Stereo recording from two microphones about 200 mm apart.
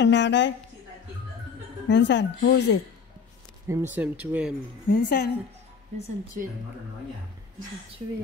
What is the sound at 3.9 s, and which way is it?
Speech, 10° right (ahead or behind).